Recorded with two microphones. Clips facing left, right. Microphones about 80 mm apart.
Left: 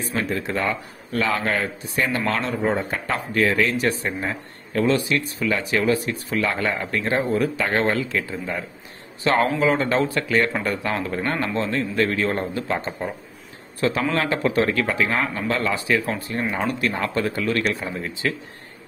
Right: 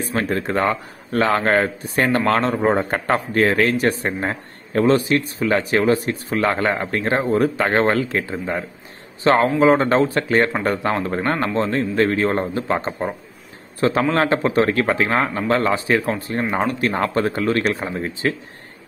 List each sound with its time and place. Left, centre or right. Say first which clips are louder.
0.0 s a man's voice: right 3 dB; right